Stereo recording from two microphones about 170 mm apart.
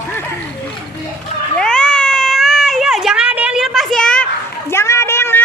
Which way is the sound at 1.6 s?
5° left (ahead or behind).